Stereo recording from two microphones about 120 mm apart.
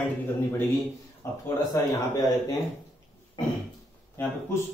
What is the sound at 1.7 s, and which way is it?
Speech, 30° left (ahead or behind).